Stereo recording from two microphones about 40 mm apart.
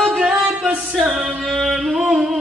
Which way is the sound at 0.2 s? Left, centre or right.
Right.